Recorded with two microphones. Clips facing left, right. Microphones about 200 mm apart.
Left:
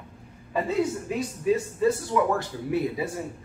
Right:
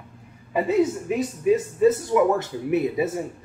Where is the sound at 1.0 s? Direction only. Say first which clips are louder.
Right 4 dB; 20° right (ahead or behind).